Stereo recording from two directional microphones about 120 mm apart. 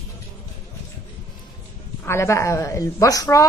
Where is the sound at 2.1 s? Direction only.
25° left (ahead or behind).